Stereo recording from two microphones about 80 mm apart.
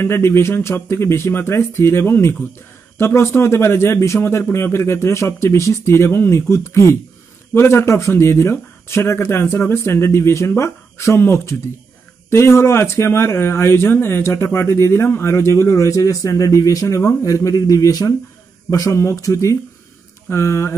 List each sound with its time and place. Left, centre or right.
0.0 s speech: left